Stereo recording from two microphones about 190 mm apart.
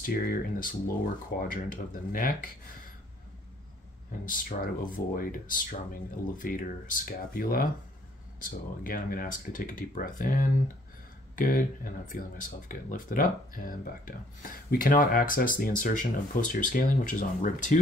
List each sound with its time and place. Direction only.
0.0 s speech: 50° left (ahead or behind)
4.3 s speech: 50° left (ahead or behind)